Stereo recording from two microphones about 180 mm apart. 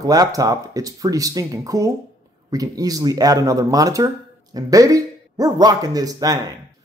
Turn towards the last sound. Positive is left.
turn(degrees=-20)  # may be behind; listen again after turning